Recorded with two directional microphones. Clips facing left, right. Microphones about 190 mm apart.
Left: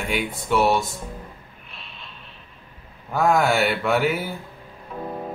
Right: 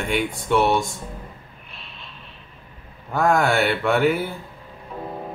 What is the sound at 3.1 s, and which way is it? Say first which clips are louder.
Speech: even; centre (ahead or behind).